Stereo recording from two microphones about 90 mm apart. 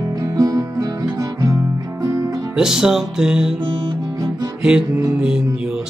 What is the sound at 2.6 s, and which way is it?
Music, 5° right (ahead or behind).